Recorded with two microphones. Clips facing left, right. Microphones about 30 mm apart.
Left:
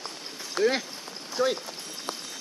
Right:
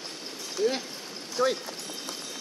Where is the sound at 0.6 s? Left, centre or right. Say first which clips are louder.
Left 3 dB; left.